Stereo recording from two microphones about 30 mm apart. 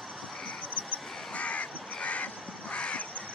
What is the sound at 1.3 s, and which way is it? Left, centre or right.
Crow, left.